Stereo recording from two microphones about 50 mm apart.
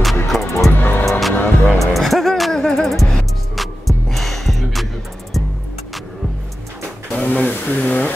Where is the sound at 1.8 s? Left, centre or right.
Centre.